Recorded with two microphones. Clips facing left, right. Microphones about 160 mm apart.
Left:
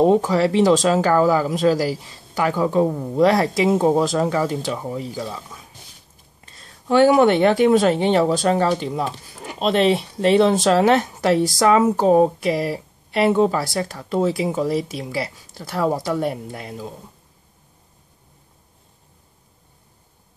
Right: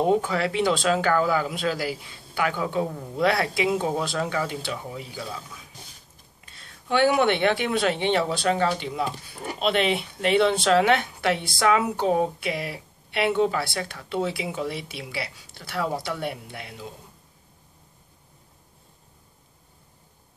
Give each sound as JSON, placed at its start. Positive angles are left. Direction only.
{"t": 0.0, "sound": "speech", "side_deg": 35}